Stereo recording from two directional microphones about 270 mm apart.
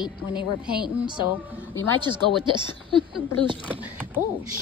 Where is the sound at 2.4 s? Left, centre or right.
Centre.